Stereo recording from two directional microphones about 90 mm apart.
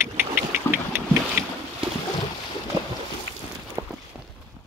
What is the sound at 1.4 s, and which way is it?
Boat, 25° right (ahead or behind).